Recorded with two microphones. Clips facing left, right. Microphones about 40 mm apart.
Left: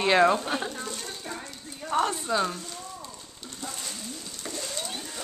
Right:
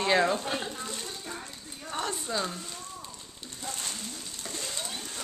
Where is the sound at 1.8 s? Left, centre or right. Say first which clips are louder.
Left 8 dB; left.